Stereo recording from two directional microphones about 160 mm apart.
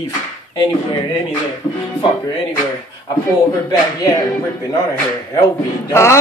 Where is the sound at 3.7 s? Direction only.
20° left (ahead or behind).